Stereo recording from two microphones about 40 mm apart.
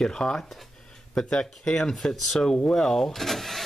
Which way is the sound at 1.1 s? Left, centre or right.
Centre.